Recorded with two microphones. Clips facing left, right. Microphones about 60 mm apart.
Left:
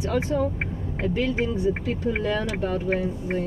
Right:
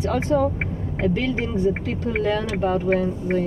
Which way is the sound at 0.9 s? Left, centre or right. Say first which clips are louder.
Right 2 dB; right.